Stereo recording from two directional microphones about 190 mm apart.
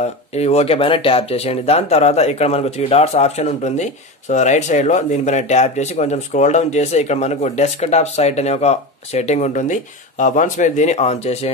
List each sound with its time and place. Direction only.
0.0 s speech: 35° left (ahead or behind)